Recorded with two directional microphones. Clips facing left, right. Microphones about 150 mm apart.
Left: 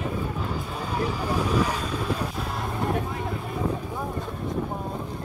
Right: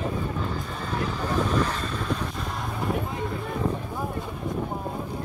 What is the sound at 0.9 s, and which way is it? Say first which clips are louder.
Vehicle: even; 10° left (ahead or behind).